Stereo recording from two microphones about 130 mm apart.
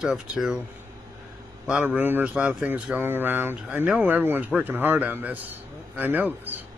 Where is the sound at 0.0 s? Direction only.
5° right (ahead or behind).